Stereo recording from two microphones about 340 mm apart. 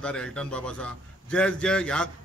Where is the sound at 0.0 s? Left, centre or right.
Centre.